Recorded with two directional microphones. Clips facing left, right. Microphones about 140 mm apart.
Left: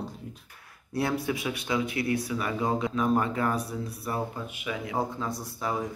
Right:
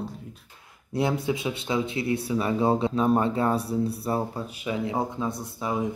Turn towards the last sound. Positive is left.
turn(degrees=-20)  # may be behind; listen again after turning